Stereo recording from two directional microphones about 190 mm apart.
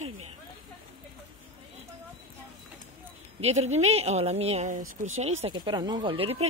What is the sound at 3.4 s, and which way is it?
Speech, 35° right (ahead or behind).